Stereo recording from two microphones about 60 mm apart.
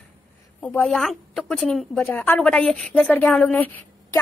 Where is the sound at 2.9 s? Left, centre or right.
Left.